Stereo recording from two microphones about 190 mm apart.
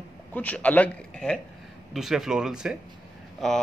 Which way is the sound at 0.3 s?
10° left (ahead or behind).